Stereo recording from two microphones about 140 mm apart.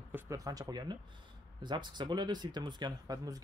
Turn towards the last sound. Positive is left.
turn(degrees=-25)  # may be behind; listen again after turning